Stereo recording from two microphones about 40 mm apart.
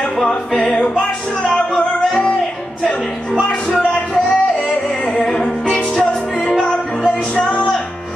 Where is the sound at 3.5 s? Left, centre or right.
Left.